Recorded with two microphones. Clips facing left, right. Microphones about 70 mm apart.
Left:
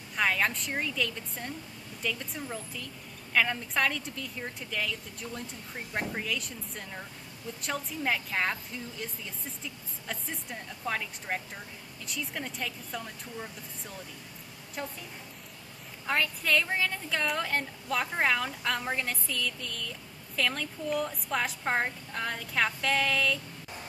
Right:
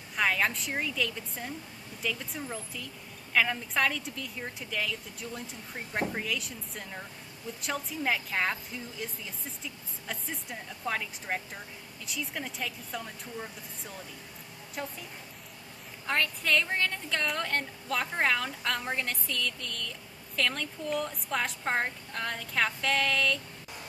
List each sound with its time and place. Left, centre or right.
0.1 s a woman's voice: centre
16.1 s a woman's voice: centre